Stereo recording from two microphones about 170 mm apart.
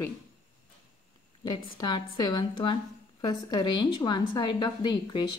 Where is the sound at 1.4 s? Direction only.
25° left (ahead or behind).